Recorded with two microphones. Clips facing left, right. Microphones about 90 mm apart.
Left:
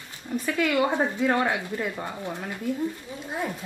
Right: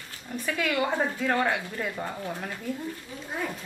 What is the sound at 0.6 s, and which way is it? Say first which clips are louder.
A woman's voice: left 3 dB; 10° left (ahead or behind).